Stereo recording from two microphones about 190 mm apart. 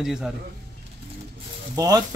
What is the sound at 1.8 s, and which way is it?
Speech, 20° right (ahead or behind).